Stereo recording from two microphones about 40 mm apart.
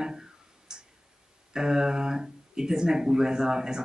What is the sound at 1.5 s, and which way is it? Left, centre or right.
Speech, centre.